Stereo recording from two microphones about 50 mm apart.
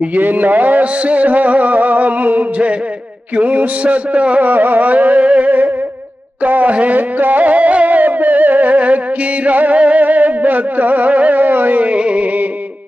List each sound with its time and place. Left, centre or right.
0.1 s music: right